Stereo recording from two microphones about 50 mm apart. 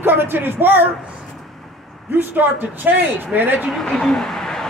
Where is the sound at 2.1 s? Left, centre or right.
Right.